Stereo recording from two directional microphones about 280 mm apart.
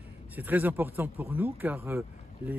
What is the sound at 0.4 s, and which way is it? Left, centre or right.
Speech, centre.